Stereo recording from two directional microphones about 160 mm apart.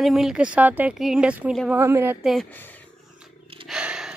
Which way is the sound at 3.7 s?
5° right (ahead or behind).